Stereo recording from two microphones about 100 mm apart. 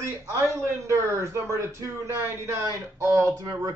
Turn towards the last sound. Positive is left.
turn(degrees=-35)  # may be behind; listen again after turning